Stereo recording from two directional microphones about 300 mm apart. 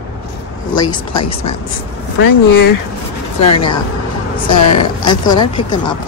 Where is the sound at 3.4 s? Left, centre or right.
Left.